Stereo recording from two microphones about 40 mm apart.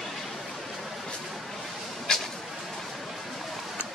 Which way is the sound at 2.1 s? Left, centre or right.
Centre.